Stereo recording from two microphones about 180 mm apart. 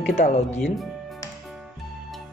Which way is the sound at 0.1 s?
40° left (ahead or behind).